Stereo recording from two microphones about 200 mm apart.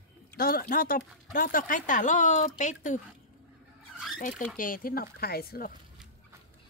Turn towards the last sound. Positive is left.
turn(degrees=50)  # may be behind; listen again after turning